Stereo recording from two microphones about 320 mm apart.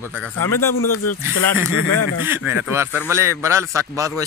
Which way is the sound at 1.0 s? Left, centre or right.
Left.